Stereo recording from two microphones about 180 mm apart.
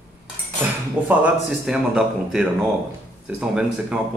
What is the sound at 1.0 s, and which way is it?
Speech, 5° right (ahead or behind).